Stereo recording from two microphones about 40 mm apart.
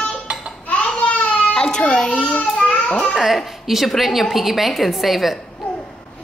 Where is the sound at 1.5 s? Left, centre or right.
Left.